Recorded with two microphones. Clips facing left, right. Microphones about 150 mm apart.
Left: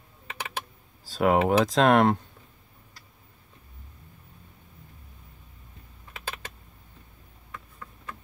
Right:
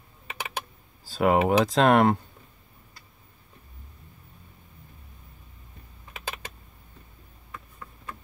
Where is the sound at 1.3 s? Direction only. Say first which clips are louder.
Even; 10° right (ahead or behind).